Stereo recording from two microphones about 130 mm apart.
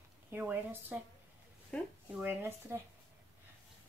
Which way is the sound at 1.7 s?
10° left (ahead or behind).